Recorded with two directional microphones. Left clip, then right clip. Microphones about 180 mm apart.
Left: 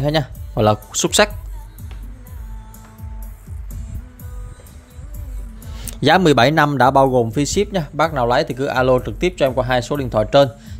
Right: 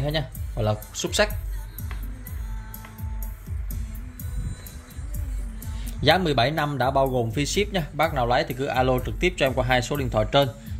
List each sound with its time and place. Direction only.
0.0 s speech: 55° left (ahead or behind)
5.8 s speech: 65° left (ahead or behind); by 10.7 s 40° left (ahead or behind)